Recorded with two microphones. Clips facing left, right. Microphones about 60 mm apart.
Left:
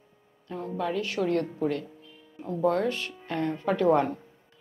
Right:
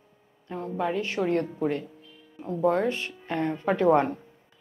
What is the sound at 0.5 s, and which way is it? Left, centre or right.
Speech, right.